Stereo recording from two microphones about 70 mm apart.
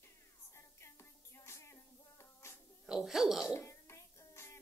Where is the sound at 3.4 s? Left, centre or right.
Left.